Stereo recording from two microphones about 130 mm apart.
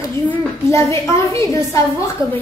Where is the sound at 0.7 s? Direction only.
20° left (ahead or behind).